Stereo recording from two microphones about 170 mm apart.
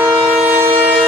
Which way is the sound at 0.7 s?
30° right (ahead or behind).